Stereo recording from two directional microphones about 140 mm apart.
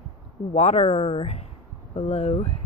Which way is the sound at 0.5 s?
50° left (ahead or behind).